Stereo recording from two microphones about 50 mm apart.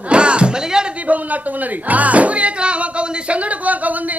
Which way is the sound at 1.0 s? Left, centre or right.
Right.